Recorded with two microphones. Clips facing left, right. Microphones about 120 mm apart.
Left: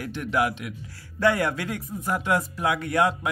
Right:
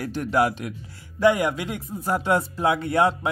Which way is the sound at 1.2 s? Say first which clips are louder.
Right 3 dB; 15° right (ahead or behind).